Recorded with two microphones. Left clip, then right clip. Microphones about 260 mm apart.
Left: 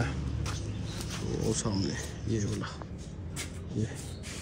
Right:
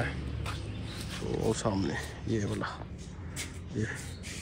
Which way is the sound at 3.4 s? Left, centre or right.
Centre.